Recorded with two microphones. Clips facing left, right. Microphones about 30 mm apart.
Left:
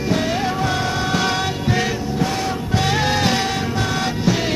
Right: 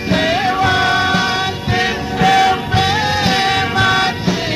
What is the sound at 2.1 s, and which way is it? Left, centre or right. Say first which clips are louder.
Music: right 13 dB; right.